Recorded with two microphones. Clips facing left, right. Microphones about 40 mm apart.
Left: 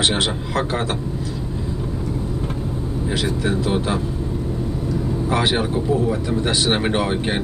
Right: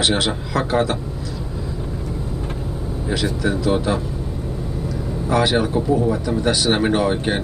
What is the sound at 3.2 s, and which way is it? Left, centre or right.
Speech, left.